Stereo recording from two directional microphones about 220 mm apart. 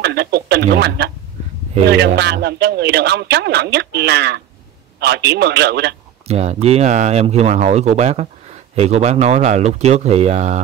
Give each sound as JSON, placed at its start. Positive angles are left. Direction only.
{"t": 0.0, "sound": "a man's voice", "side_deg": -45}
{"t": 6.2, "sound": "speech", "side_deg": -30}